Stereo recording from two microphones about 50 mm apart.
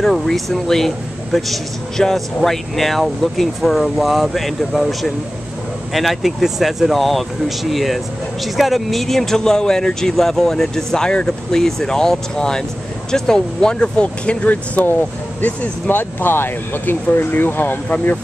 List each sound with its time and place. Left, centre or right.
0.0 s speech: centre
5.9 s speech: centre; by 14.5 s left
14.5 s speech: left